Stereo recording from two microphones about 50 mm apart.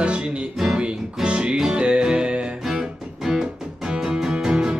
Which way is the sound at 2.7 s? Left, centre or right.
Centre.